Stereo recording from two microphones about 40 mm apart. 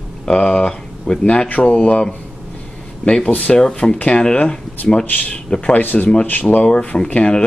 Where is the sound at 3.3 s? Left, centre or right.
Left.